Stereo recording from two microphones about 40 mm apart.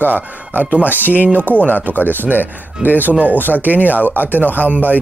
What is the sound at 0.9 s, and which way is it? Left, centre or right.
Speech, left.